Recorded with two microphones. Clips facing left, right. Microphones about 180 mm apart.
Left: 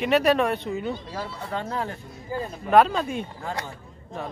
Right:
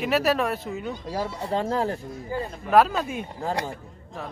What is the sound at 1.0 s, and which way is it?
Speech, 40° right (ahead or behind).